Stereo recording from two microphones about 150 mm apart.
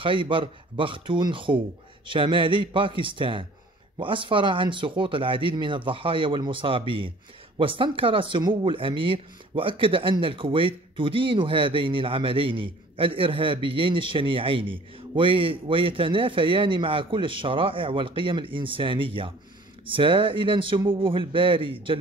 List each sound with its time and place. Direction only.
0.0 s speech: 35° right (ahead or behind)